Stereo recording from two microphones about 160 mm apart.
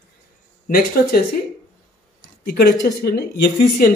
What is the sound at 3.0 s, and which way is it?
Speech, 85° left.